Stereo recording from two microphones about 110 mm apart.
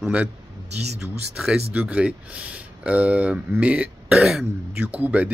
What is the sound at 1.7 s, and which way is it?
Speech, 10° right (ahead or behind).